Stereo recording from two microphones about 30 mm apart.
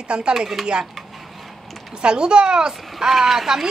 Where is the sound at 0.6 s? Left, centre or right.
Centre.